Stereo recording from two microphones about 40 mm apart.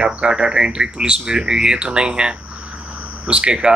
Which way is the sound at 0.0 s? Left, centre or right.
Right.